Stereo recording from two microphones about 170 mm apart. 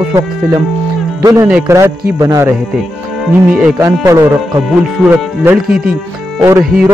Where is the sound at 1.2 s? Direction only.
20° right (ahead or behind).